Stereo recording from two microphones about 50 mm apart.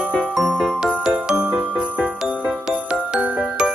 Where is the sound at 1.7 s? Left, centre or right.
Right.